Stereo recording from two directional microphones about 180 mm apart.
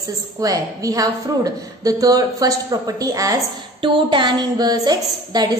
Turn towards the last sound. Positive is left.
turn(degrees=-20)  # may be behind; listen again after turning